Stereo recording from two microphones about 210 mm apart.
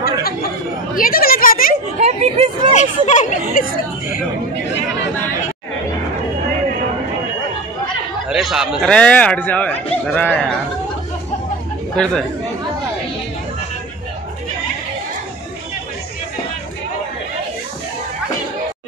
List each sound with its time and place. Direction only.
0.9 s a woman's voice: 45° left (ahead or behind)
2.0 s speech: 30° right (ahead or behind)
2.7 s speech: 35° left (ahead or behind)
8.3 s speech: centre (ahead or behind)
11.9 s speech: 5° left (ahead or behind)